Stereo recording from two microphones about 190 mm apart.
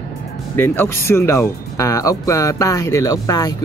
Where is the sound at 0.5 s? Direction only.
10° left (ahead or behind).